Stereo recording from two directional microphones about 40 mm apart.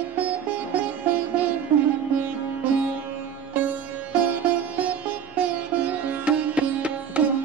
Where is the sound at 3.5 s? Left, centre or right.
Right.